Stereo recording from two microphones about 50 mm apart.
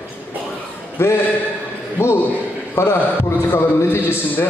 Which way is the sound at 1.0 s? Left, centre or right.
Left.